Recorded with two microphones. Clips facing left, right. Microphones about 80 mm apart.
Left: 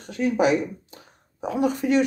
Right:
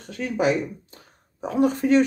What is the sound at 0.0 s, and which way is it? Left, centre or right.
Speech, left.